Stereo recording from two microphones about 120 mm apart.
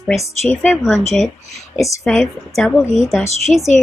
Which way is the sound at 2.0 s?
Centre (ahead or behind).